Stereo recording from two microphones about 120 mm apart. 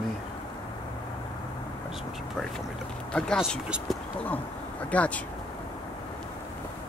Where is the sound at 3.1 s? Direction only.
5° left (ahead or behind).